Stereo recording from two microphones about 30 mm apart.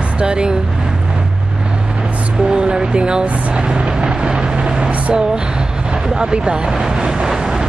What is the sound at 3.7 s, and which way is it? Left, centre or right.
Vehicle, right.